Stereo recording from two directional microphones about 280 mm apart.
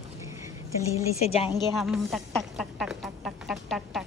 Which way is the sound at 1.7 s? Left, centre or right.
Centre.